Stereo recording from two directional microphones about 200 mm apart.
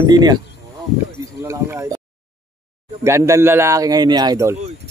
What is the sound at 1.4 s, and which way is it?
Speech, 15° right (ahead or behind).